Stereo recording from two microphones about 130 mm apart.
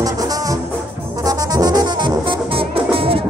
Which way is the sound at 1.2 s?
30° right (ahead or behind).